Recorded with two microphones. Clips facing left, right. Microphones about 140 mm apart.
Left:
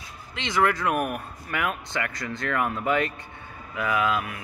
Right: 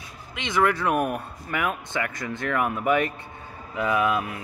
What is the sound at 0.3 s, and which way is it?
Speech, 15° right (ahead or behind).